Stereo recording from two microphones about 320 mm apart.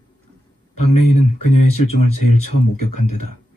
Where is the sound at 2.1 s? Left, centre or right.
Left.